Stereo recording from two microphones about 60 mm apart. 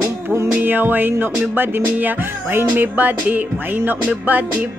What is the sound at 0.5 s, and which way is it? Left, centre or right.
Music, right.